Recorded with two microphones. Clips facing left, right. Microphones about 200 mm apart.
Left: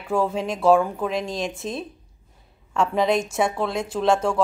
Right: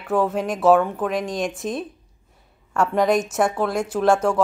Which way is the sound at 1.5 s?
25° left (ahead or behind).